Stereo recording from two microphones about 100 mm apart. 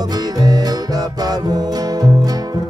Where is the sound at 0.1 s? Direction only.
40° right (ahead or behind).